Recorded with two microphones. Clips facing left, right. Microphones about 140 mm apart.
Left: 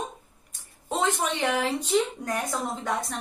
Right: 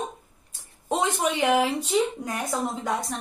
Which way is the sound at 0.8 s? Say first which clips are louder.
Right 2 dB; 10° right (ahead or behind).